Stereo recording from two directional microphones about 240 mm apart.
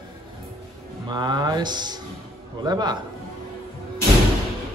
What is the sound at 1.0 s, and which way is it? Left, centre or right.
Speech, centre.